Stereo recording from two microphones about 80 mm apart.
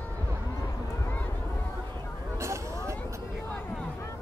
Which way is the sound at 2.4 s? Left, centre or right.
Right.